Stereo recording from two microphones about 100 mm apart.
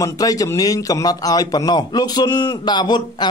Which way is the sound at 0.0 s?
35° left (ahead or behind).